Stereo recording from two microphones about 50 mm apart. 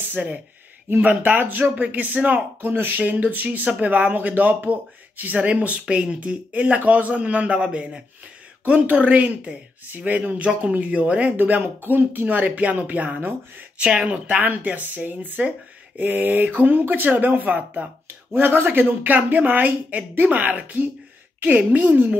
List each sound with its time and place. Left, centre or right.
0.1 s speech: right
18.0 s speech: right